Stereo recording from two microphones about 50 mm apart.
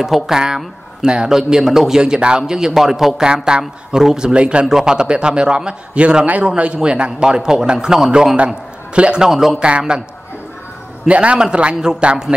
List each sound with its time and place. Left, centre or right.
0.0 s a man's voice: centre
4.3 s a man's voice: right
9.3 s a man's voice: centre
9.6 s a man's voice: right
11.1 s a man's voice: right